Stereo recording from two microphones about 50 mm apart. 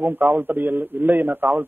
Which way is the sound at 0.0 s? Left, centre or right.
Right.